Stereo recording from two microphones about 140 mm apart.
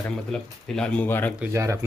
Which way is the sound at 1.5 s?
20° right (ahead or behind).